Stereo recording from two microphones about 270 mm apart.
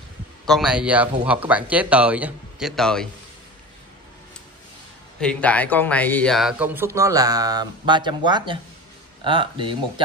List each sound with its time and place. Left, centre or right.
0.5 s speech: centre
5.2 s speech: centre